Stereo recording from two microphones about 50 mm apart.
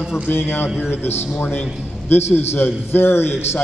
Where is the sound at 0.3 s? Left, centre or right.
Left.